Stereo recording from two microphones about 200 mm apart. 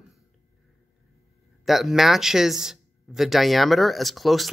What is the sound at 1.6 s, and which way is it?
Speech, centre (ahead or behind).